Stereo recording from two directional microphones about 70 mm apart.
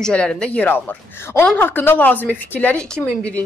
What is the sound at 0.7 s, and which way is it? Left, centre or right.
Speech, left.